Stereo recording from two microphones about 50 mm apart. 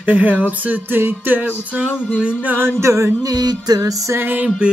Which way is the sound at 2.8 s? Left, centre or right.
Right.